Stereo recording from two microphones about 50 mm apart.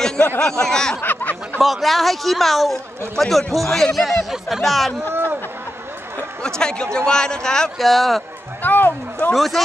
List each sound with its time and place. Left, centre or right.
0.4 s speech: centre
1.0 s a sound: left
1.6 s a man's voice: centre
5.0 s a sound: right
6.4 s speech: centre
7.8 s a man's voice: centre
8.6 s speech: left
9.3 s a man's voice: centre